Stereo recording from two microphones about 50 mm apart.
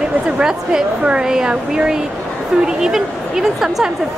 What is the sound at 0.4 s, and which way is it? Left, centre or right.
Speech, centre.